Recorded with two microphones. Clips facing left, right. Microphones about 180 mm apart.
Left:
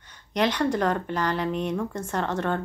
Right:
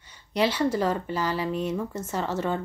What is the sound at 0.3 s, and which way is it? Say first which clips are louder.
A woman's voice: even; 5° right (ahead or behind).